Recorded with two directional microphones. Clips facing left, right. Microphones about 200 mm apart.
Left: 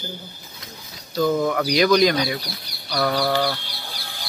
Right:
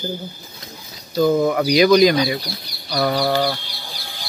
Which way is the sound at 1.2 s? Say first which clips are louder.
Right 4 dB; 15° right (ahead or behind).